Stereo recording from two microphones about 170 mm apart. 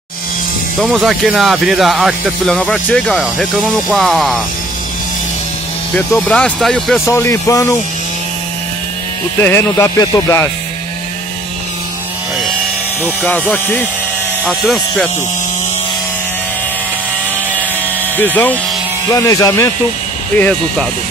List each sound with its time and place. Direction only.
0.7 s speech: centre (ahead or behind)
5.9 s speech: 5° left (ahead or behind)
7.1 s music: 15° left (ahead or behind)
9.4 s music: 15° left (ahead or behind)
13.0 s music: 10° left (ahead or behind)
14.4 s speech: centre (ahead or behind)
18.1 s music: 10° left (ahead or behind)
19.1 s speech: 20° left (ahead or behind)